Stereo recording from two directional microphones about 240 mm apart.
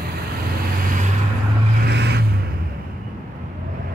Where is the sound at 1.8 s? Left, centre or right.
Right.